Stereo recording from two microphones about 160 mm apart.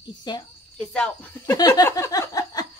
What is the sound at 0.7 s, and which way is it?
Speech, 5° left (ahead or behind).